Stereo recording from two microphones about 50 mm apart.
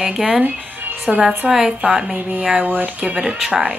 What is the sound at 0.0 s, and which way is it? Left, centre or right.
Speech, centre.